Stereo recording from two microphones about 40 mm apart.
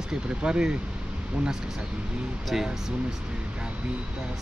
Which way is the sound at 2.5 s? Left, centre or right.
Centre.